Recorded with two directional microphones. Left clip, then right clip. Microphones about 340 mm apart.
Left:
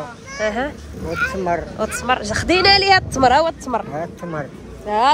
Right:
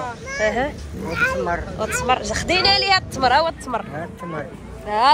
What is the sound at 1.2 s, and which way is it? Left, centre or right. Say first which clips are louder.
Speech: right 3 dB; right.